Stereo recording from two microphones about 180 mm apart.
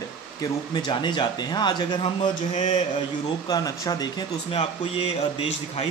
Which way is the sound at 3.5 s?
20° left (ahead or behind).